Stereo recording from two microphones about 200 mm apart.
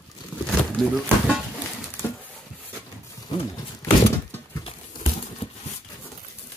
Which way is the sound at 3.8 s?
15° left (ahead or behind).